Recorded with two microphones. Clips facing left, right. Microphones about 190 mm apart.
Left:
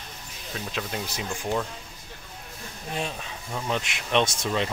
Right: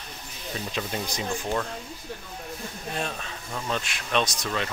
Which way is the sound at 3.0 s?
15° left (ahead or behind).